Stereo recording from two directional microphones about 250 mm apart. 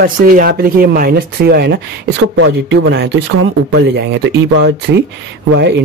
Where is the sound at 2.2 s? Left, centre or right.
Right.